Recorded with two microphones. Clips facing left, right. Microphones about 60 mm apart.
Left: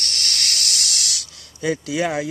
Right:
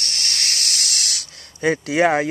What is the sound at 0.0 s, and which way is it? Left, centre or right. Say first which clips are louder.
Speech: even; right.